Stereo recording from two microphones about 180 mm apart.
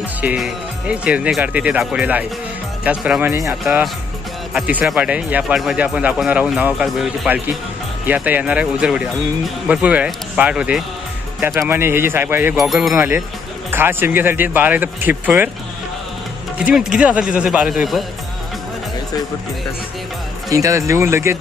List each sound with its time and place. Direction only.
0.2 s speech: 5° right (ahead or behind)
12.5 s speech: centre (ahead or behind)
12.9 s speech: 10° right (ahead or behind)
16.5 s speech: 5° right (ahead or behind)
20.4 s speech: 15° right (ahead or behind)